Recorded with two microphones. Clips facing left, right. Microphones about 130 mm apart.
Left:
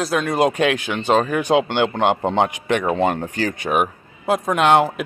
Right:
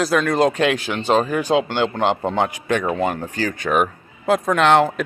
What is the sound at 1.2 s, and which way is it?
Speech, 60° left (ahead or behind).